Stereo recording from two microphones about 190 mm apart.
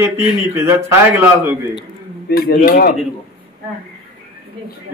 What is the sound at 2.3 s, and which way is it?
Speech, 50° left (ahead or behind).